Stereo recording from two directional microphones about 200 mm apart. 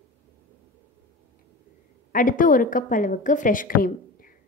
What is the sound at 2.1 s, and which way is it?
A woman's voice, 45° left (ahead or behind).